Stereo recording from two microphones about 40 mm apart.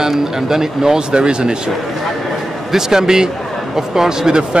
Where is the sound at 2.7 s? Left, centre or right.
Centre.